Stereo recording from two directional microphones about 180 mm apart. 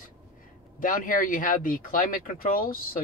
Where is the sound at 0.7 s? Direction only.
50° left (ahead or behind).